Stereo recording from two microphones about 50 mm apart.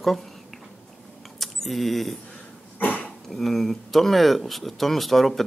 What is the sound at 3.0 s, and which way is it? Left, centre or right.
Speech, centre.